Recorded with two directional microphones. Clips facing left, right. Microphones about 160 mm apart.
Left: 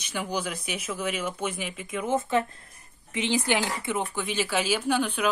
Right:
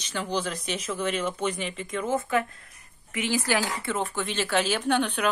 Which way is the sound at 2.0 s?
20° left (ahead or behind).